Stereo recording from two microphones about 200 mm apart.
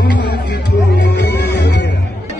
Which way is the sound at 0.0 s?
60° left (ahead or behind).